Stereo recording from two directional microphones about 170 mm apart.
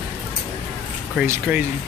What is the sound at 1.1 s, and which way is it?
Speech, 10° right (ahead or behind).